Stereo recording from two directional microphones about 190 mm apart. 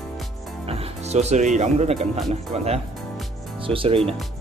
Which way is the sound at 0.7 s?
30° right (ahead or behind).